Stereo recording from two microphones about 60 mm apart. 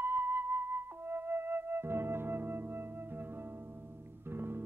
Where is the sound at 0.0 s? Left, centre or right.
Right.